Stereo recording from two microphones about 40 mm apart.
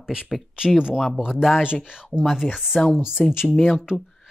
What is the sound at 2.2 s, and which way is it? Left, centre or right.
Speech, centre.